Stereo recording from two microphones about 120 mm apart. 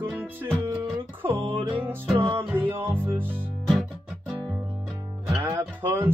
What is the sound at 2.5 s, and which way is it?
Music, 20° right (ahead or behind).